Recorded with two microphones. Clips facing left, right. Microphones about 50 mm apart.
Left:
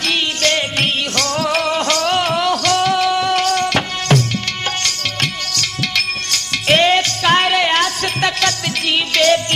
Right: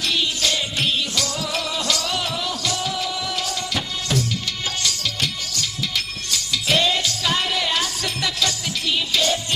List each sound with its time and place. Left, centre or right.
0.0 s music: left